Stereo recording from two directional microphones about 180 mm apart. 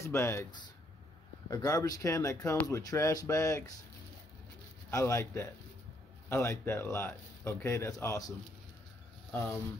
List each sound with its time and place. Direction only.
0.0 s a man's voice: 15° left (ahead or behind)
4.9 s a man's voice: 15° left (ahead or behind)